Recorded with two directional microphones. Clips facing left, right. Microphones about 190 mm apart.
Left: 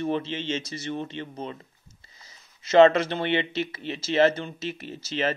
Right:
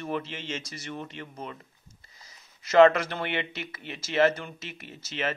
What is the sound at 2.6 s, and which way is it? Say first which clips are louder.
Speech: left 2 dB; 25° left (ahead or behind).